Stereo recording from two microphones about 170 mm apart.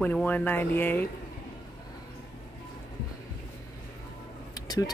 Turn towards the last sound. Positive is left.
turn(degrees=20)  # may be behind; listen again after turning